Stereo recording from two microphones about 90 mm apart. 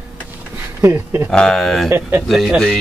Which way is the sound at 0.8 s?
35° right (ahead or behind).